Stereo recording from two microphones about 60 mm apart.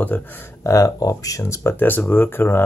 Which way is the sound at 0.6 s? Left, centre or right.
Left.